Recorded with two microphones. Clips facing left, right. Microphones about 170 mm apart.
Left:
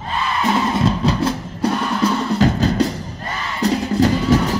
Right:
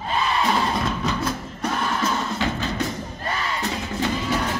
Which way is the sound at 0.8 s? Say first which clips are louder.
Left 7 dB; 30° left (ahead or behind).